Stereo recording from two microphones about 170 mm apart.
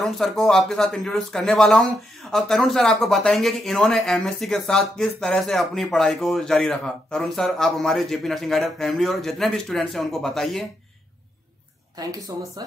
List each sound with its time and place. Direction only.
0.0 s speech: centre (ahead or behind)
12.1 s speech: 20° right (ahead or behind)